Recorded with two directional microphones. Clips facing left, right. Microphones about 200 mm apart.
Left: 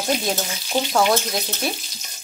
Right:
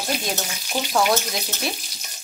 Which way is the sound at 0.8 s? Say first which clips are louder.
Left 4 dB; 20° left (ahead or behind).